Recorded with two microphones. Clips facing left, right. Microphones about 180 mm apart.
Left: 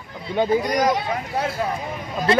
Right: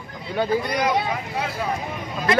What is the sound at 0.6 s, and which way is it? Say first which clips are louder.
Speech: left 3 dB; 40° left (ahead or behind).